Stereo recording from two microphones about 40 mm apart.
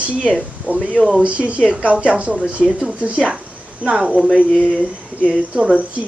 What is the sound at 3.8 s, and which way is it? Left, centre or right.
Speech, right.